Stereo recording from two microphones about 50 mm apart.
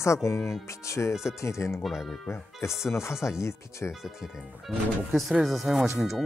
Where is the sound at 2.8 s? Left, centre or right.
Left.